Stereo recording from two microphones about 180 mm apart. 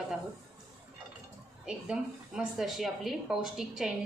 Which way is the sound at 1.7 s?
5° right (ahead or behind).